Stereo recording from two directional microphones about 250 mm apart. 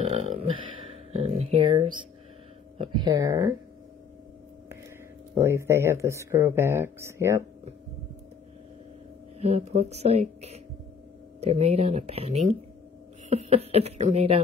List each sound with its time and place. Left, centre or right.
0.1 s speech: right
5.3 s speech: centre
9.4 s speech: right
11.4 s speech: right
13.3 s a sound: right
13.7 s speech: right